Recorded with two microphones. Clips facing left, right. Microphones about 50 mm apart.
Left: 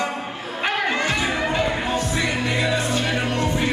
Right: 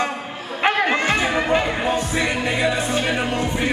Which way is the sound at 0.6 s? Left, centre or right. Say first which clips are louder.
Right 4 dB; right.